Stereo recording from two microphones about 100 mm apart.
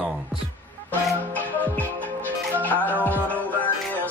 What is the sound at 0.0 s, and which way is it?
Music, 10° right (ahead or behind).